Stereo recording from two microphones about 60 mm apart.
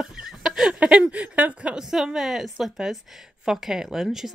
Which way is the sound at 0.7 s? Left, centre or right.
Centre.